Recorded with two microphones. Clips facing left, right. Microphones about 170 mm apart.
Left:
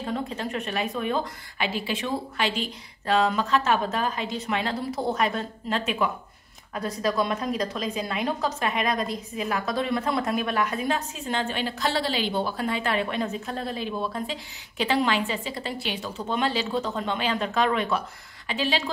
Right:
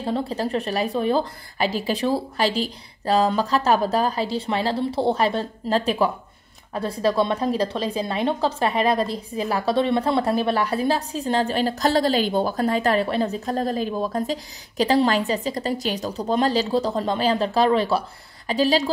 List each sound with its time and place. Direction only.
0.0 s a woman's voice: 35° right (ahead or behind)